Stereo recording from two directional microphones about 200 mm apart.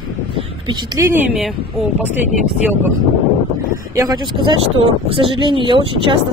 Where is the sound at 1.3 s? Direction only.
Centre (ahead or behind).